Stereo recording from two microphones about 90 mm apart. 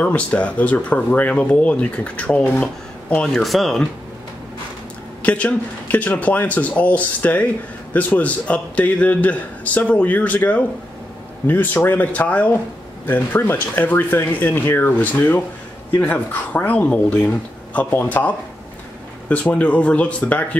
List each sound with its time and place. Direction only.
0.0 s a man's voice: 15° left (ahead or behind)
3.2 s speech: 5° left (ahead or behind)
5.2 s a man's voice: 15° left (ahead or behind)